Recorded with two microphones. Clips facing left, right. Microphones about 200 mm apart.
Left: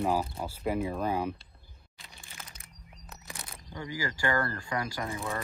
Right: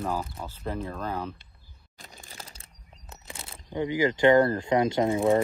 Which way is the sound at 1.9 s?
50° right (ahead or behind).